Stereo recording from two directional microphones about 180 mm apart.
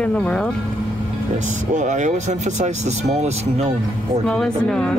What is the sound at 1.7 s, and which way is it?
Speech, 40° right (ahead or behind).